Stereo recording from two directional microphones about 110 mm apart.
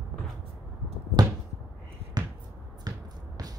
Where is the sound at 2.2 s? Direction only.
40° right (ahead or behind).